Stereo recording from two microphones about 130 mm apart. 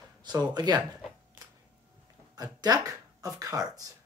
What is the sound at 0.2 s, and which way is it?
Speech, 35° right (ahead or behind).